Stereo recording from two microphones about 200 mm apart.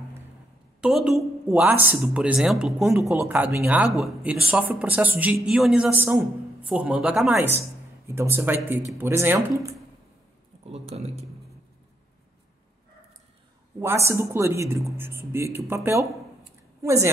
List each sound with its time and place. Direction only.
0.7 s a woman's voice: 5° right (ahead or behind)
10.7 s speech: 30° right (ahead or behind)
13.7 s speech: 15° right (ahead or behind)